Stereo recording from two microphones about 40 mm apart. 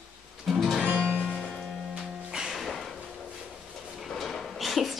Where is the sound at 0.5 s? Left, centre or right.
Centre.